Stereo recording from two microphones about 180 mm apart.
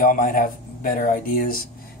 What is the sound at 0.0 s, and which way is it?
Speech, 50° left (ahead or behind).